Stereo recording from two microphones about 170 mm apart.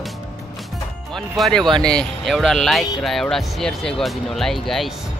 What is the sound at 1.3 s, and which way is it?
Speech, centre (ahead or behind).